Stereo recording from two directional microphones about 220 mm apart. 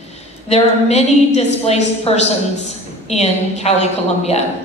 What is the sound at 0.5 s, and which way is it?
A woman's voice, 30° left (ahead or behind).